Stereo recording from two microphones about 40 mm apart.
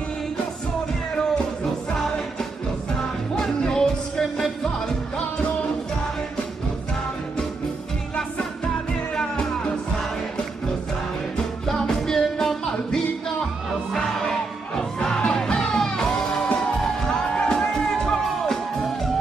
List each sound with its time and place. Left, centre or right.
3.3 s music: centre
9.1 s music: centre
11.6 s music: centre
15.0 s music: centre